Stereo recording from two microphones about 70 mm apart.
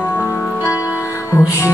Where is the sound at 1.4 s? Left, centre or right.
Left.